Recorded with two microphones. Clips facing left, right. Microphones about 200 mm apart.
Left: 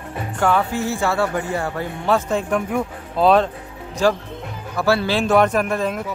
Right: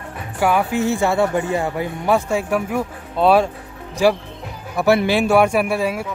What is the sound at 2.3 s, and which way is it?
Speech, 5° right (ahead or behind).